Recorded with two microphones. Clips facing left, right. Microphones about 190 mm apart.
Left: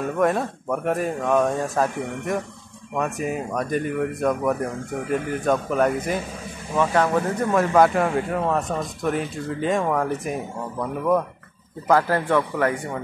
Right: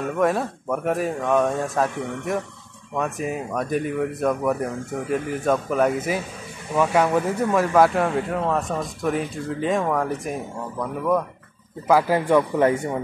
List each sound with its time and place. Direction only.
0.0 s speech: centre (ahead or behind)
11.9 s a man's voice: 10° right (ahead or behind)